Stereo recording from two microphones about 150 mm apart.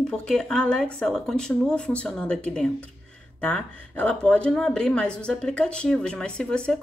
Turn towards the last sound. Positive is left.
turn(degrees=5)  # may be behind; listen again after turning